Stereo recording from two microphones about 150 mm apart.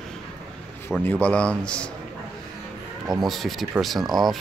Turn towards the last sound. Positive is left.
turn(degrees=0)  # may be behind; listen again after turning